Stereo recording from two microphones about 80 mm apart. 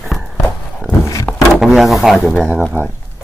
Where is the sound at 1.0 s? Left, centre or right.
Left.